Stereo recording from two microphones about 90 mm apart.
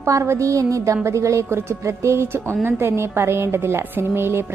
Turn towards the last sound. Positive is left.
turn(degrees=-25)  # may be behind; listen again after turning